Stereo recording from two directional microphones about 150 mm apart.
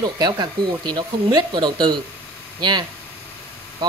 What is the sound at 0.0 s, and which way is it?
Speech, 30° right (ahead or behind).